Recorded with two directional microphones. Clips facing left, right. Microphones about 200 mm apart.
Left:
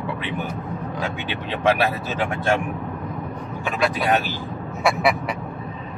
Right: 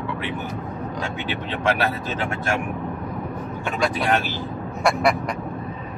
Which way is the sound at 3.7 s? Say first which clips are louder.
Left 1 dB; centre (ahead or behind).